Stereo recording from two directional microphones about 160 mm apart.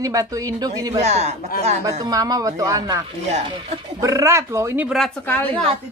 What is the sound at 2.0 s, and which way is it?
Speech, 20° right (ahead or behind).